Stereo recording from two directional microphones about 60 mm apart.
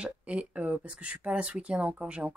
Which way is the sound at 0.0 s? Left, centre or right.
Right.